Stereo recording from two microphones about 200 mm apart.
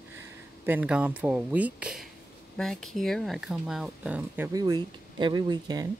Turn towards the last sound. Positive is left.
turn(degrees=-20)  # may be behind; listen again after turning